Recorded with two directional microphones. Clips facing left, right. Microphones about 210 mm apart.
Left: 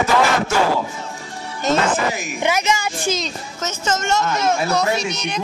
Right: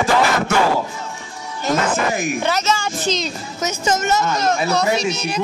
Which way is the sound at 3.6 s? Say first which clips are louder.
Right 3 dB; 10° right (ahead or behind).